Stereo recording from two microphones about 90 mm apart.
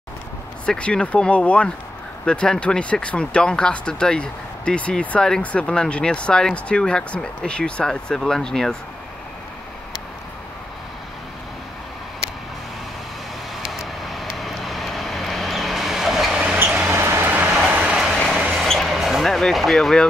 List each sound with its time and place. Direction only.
0.7 s speech: 10° left (ahead or behind)
13.6 s vehicle: centre (ahead or behind)
16.5 s train: 25° right (ahead or behind)
18.1 s a sound: 5° left (ahead or behind)
18.6 s vehicle: centre (ahead or behind)